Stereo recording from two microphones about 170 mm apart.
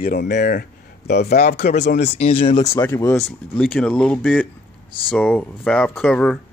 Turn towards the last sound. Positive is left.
turn(degrees=5)  # may be behind; listen again after turning